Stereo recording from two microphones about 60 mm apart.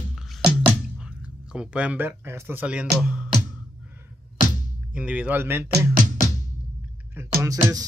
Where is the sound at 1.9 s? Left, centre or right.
Right.